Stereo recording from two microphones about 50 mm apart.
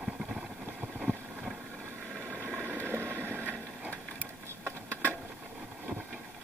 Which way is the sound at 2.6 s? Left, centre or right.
Right.